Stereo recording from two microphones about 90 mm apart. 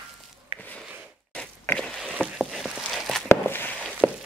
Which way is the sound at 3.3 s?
25° left (ahead or behind).